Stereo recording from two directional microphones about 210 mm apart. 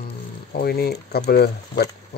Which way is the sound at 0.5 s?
45° left (ahead or behind).